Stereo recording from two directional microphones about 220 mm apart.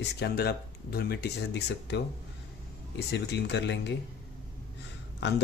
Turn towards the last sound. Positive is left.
turn(degrees=50)  # may be behind; listen again after turning